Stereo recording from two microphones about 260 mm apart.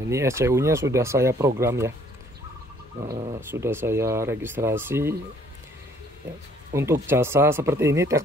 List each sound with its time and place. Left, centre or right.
0.1 s speech: centre
3.1 s speech: right
3.4 s speech: centre
6.7 s speech: centre